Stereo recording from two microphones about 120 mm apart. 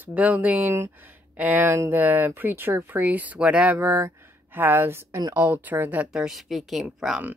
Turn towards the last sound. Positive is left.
turn(degrees=-5)  # may be behind; listen again after turning